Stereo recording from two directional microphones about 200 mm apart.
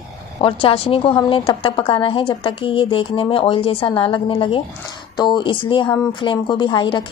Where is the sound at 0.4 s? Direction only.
25° left (ahead or behind).